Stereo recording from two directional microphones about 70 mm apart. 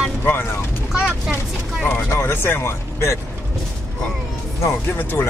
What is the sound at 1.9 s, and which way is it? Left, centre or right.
Speech, left.